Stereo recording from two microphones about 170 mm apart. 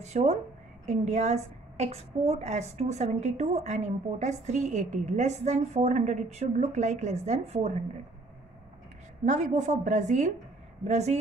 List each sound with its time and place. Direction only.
0.0 s a woman's voice: 40° right (ahead or behind)
9.2 s a woman's voice: 45° right (ahead or behind)